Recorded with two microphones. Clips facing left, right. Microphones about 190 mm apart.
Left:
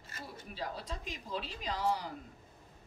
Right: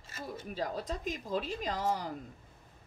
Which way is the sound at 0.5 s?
45° right (ahead or behind).